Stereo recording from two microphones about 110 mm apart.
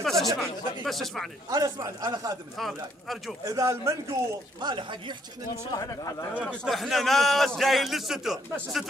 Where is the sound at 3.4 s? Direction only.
30° right (ahead or behind).